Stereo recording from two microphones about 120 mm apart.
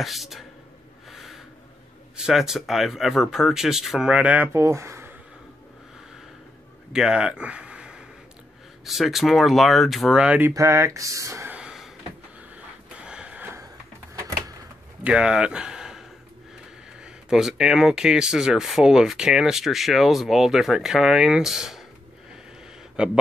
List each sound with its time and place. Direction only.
0.0 s speech: centre (ahead or behind)
1.1 s a sound: centre (ahead or behind)
2.1 s speech: 5° right (ahead or behind); by 5.1 s 20° right (ahead or behind)
6.9 s speech: 5° right (ahead or behind)
10.5 s speech: 25° right (ahead or behind)
11.5 s a sound: 5° right (ahead or behind)
15.0 s speech: 10° right (ahead or behind)
23.0 s speech: 5° right (ahead or behind)